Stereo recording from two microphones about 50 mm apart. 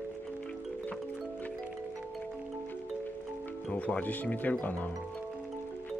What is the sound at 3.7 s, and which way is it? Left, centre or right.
Speech, left.